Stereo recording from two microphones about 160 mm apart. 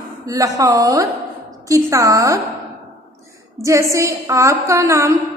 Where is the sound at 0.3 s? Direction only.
20° right (ahead or behind).